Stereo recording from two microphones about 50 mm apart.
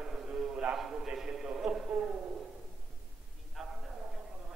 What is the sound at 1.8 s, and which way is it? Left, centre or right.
Speech, right.